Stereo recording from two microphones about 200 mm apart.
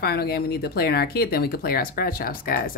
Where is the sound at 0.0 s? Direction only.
50° left (ahead or behind).